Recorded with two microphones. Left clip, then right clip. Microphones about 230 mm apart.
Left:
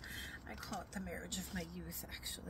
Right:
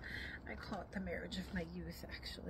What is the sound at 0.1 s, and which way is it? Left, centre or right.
Speech, centre.